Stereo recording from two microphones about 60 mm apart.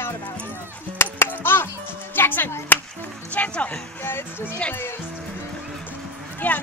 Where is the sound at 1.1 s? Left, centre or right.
Left.